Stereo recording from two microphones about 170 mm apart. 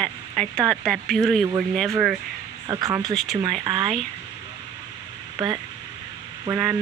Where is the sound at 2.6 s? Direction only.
20° right (ahead or behind).